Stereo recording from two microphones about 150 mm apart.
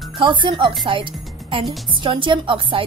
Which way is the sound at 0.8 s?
35° right (ahead or behind).